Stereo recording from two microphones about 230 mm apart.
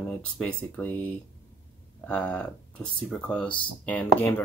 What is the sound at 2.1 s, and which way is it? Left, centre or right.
Speech, centre.